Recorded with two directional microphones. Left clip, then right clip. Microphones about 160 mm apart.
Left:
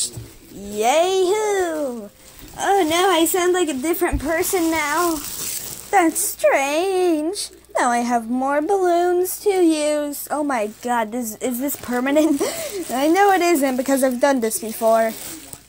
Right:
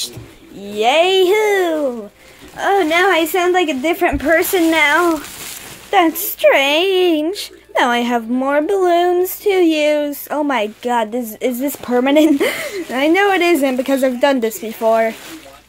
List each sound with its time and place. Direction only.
0.7 s speech: 20° left (ahead or behind)
1.0 s a sound: 5° right (ahead or behind)
2.5 s a woman's voice: 15° left (ahead or behind)
3.6 s a woman's voice: centre (ahead or behind)
4.2 s speech: 15° right (ahead or behind)
6.0 s a woman's voice: centre (ahead or behind)
12.9 s speech: 10° left (ahead or behind)